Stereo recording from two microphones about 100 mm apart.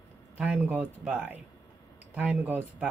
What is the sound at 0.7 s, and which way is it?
Speech, 20° right (ahead or behind).